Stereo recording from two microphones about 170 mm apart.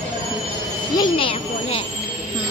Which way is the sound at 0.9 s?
30° left (ahead or behind).